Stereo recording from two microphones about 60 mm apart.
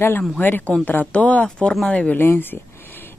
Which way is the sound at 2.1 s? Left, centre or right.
Left.